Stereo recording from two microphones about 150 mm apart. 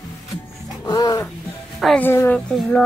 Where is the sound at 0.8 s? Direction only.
25° left (ahead or behind).